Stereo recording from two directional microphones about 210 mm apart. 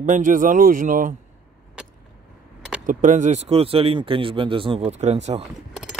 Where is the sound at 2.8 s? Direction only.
35° right (ahead or behind).